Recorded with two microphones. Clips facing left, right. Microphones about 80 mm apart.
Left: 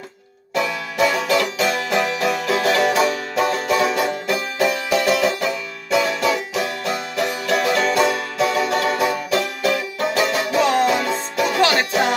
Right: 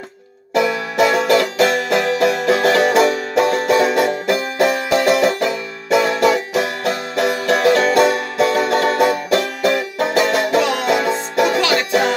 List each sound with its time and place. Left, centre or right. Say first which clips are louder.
0.6 s music: right 4 dB; right
7.5 s music: right 4 dB; right